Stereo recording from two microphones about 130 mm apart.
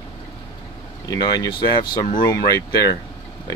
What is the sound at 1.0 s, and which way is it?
Speech, 30° left (ahead or behind).